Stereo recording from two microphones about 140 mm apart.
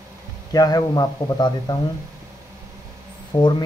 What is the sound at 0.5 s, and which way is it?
Speech, 25° left (ahead or behind).